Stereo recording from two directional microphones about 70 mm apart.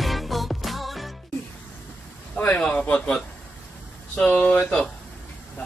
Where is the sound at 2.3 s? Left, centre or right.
Centre.